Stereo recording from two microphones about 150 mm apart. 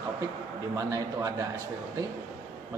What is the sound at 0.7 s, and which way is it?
Speech, 25° right (ahead or behind).